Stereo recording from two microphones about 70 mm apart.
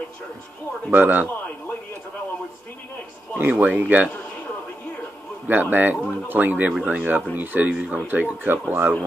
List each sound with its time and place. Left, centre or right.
0.9 s speech: right
3.3 s speech: right
5.5 s speech: right